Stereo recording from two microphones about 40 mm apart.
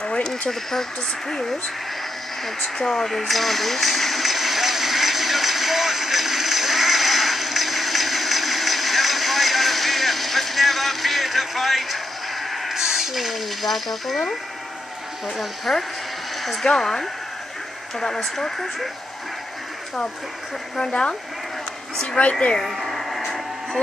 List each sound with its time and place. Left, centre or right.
0.0 s a sound: left
0.5 s speech: centre
2.8 s a sound: centre
12.7 s speech: centre
15.3 s speech: centre
20.7 s speech: left
22.3 s speech: left
22.6 s speech: centre
22.9 s a sound: centre